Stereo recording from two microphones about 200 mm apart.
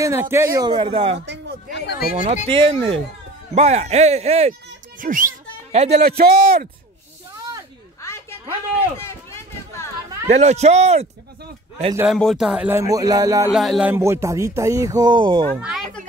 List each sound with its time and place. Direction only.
0.0 s speech: 10° right (ahead or behind); by 1.2 s 30° right (ahead or behind)
1.7 s speech: 55° left (ahead or behind)
2.1 s speech: 30° right (ahead or behind)
5.9 s a man's voice: 50° right (ahead or behind)
8.0 s a sound: 15° left (ahead or behind)
10.2 s speech: 35° right (ahead or behind)
12.1 s speech: centre (ahead or behind); by 13.5 s 15° right (ahead or behind)
13.5 s speech: centre (ahead or behind); by 15.4 s 25° right (ahead or behind)
15.5 s speech: centre (ahead or behind)